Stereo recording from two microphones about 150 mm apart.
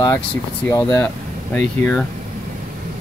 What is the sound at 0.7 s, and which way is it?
Speech, 20° left (ahead or behind).